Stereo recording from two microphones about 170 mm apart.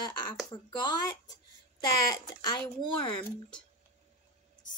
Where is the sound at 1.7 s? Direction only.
20° left (ahead or behind).